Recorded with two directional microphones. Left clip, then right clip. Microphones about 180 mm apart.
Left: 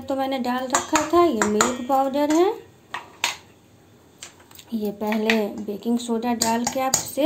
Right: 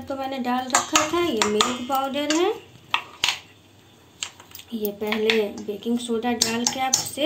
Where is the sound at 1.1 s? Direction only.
70° left (ahead or behind).